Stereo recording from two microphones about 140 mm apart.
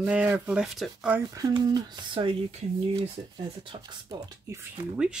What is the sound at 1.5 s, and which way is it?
Speech, 30° right (ahead or behind).